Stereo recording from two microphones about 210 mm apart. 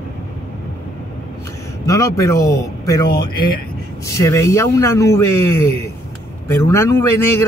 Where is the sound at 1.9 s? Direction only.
15° left (ahead or behind).